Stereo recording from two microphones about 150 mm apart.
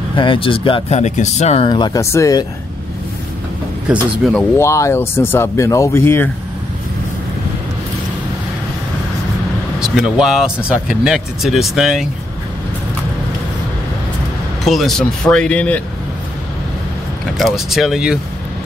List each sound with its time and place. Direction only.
0.1 s speech: 35° left (ahead or behind)
0.9 s speech: 50° left (ahead or behind)
1.7 s speech: 25° left (ahead or behind)
4.6 s speech: 20° left (ahead or behind)
9.8 s speech: 5° right (ahead or behind)
14.6 s speech: centre (ahead or behind)
17.4 s speech: centre (ahead or behind)